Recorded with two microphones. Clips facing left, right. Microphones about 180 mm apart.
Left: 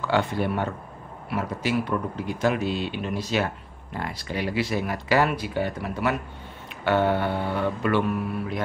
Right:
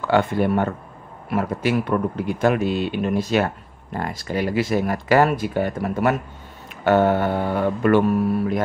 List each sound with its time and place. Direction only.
0.1 s speech: 50° right (ahead or behind)